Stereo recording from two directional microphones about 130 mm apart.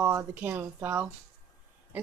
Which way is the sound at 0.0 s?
20° right (ahead or behind).